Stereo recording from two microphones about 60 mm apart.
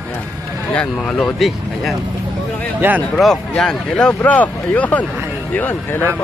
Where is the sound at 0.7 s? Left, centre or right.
Centre.